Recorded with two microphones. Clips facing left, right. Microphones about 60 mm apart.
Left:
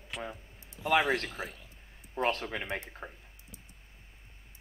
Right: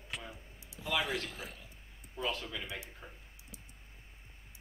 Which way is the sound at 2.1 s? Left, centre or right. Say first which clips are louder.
Left 7 dB; left.